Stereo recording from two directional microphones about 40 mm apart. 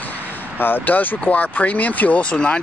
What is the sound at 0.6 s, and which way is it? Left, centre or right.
Speech, left.